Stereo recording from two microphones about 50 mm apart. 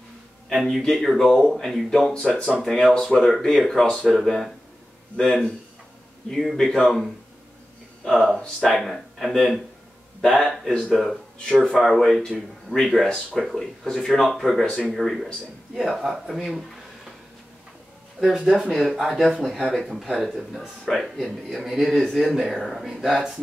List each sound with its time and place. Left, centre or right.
0.5 s speech: centre
2.1 s speech: left
2.6 s speech: centre
8.7 s speech: centre
18.2 s speech: centre
20.8 s speech: centre